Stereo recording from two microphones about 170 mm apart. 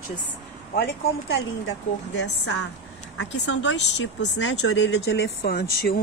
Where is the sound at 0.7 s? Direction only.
80° left.